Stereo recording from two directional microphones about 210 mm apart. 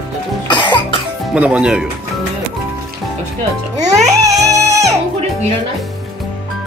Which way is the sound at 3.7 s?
15° right (ahead or behind).